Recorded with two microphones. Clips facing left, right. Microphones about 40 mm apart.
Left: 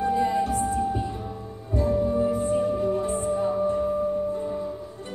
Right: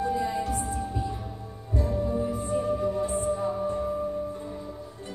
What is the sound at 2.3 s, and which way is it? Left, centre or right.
Music, left.